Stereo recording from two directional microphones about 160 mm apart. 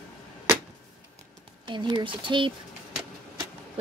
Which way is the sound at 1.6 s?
30° right (ahead or behind).